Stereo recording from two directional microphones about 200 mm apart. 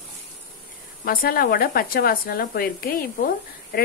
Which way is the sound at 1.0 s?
45° left (ahead or behind).